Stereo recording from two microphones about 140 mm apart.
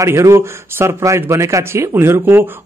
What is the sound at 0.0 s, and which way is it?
A man's voice, 20° right (ahead or behind).